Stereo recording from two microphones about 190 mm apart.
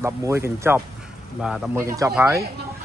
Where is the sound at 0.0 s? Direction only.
15° right (ahead or behind).